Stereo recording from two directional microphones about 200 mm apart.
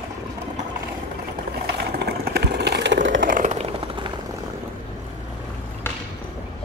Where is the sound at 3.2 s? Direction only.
40° right (ahead or behind); by 4.1 s 25° right (ahead or behind).